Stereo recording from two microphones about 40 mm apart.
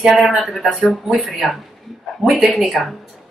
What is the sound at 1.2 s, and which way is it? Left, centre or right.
Speech, right.